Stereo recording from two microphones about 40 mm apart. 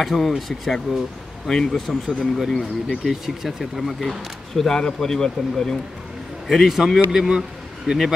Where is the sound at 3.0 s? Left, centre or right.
Centre.